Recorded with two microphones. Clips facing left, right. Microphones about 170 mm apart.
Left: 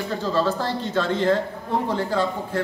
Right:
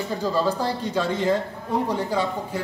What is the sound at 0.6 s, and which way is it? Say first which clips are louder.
A woman's voice: even; 10° right (ahead or behind).